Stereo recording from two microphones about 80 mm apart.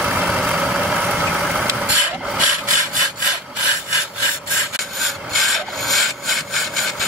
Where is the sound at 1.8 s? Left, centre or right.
Centre.